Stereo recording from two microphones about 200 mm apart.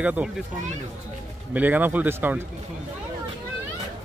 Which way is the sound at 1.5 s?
10° right (ahead or behind).